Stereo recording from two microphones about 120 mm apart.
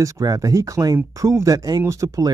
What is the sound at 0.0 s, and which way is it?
Speech, 30° right (ahead or behind).